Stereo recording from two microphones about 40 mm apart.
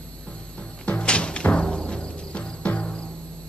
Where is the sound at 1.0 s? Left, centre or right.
Left.